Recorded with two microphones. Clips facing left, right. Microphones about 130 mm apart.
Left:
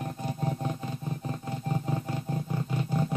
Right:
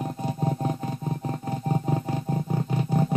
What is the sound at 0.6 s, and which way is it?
Music, 45° right (ahead or behind).